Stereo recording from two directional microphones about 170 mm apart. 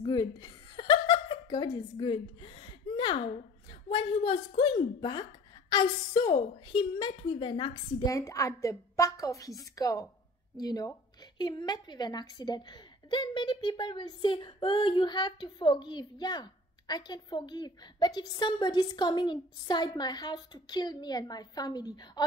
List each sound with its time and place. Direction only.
0.0 s chuckle: 25° left (ahead or behind)
3.0 s a woman's voice: 30° left (ahead or behind)
8.1 s a woman's voice: 20° left (ahead or behind)